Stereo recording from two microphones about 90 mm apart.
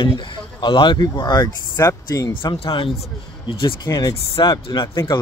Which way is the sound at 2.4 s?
75° left (ahead or behind).